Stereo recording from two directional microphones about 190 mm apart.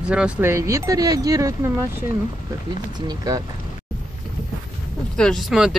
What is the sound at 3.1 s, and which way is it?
Speech, 20° right (ahead or behind).